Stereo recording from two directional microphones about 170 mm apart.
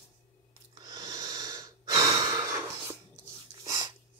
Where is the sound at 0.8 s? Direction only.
25° right (ahead or behind).